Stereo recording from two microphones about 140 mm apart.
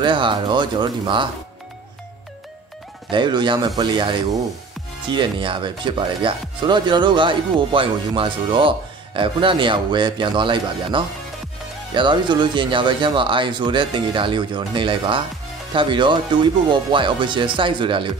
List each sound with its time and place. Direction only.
0.0 s speech: 35° right (ahead or behind)
3.1 s speech: 35° right (ahead or behind)